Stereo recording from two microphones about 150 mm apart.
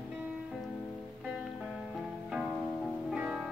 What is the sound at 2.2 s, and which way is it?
Music, centre (ahead or behind).